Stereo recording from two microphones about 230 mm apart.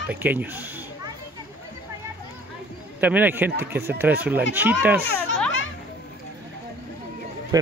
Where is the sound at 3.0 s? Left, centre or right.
Centre.